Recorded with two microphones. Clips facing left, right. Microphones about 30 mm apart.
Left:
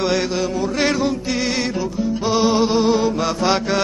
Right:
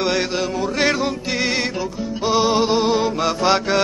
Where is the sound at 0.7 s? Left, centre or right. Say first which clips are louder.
Even; centre.